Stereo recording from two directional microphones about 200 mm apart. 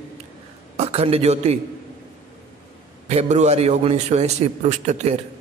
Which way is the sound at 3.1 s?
35° right (ahead or behind).